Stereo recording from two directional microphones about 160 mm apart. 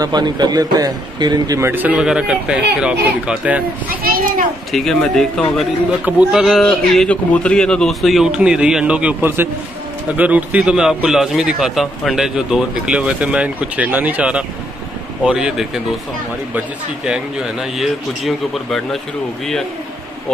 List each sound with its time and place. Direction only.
0.0 s a man's voice: 25° right (ahead or behind); by 3.6 s 5° right (ahead or behind)
3.9 s a child's voice: 65° right (ahead or behind)
4.7 s speech: centre (ahead or behind)
6.0 s a man's voice: 5° right (ahead or behind)